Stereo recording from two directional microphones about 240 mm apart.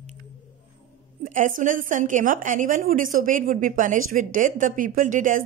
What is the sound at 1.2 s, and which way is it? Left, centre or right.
A woman's voice, right.